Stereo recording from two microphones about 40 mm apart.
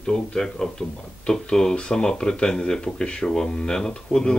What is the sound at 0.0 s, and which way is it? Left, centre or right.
Speech, centre.